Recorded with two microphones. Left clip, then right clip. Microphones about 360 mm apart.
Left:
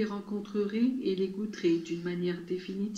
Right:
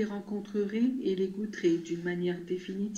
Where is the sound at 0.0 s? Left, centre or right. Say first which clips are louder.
Even; right.